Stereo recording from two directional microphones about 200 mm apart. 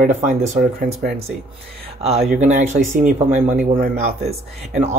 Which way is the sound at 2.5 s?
35° right (ahead or behind).